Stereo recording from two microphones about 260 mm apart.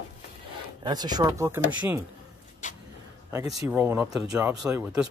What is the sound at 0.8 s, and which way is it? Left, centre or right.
Speech, centre.